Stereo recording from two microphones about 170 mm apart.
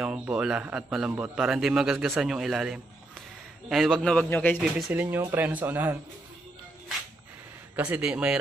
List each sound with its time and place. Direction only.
0.0 s a man's voice: 5° right (ahead or behind); by 4.6 s 10° left (ahead or behind)
4.9 s a man's voice: 10° right (ahead or behind)
7.7 s a man's voice: 5° right (ahead or behind)